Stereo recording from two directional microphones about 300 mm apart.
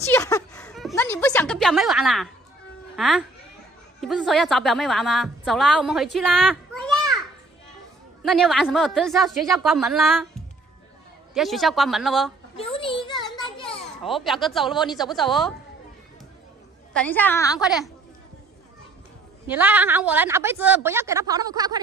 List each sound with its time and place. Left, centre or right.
0.1 s a sound: centre
3.0 s a woman's voice: centre
8.2 s speech: centre
11.3 s speech: centre
12.5 s children playing: centre
14.0 s speech: centre
16.9 s a woman's voice: centre
17.6 s speech: centre
19.4 s a woman's voice: centre